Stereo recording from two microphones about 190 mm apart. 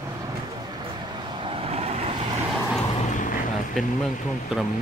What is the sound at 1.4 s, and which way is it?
Vehicle, 30° right (ahead or behind).